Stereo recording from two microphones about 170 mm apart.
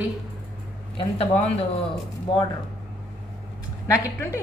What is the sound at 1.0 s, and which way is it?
Speech, 35° left (ahead or behind).